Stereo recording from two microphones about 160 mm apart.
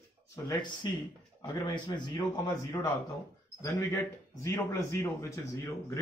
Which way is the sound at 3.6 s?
20° left (ahead or behind).